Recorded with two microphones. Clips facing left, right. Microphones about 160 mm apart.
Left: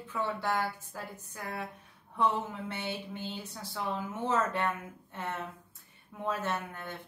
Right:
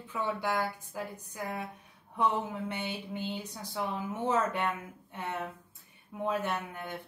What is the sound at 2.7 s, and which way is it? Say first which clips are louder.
Speech: right 1 dB; 15° right (ahead or behind).